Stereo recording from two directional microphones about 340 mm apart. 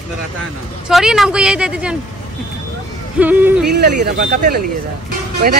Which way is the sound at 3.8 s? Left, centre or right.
Right.